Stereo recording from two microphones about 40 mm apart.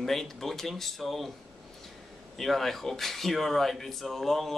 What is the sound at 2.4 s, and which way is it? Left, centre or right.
Speech, centre.